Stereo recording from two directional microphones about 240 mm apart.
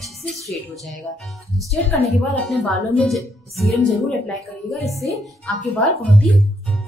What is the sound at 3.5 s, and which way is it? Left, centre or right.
Speech, centre.